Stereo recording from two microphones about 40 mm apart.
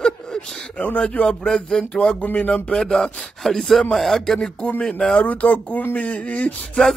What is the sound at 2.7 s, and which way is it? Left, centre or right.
Speech, centre.